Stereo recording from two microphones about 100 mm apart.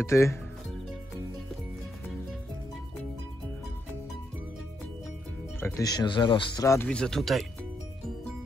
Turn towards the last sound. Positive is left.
turn(degrees=0)  # may be behind; listen again after turning